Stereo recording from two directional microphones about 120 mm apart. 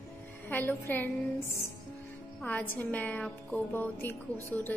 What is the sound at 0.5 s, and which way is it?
Speech, 20° left (ahead or behind).